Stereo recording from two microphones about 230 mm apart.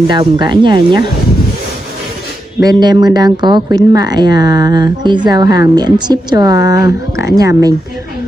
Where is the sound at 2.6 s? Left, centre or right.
Centre.